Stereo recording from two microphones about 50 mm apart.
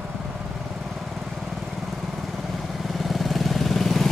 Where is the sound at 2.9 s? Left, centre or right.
Centre.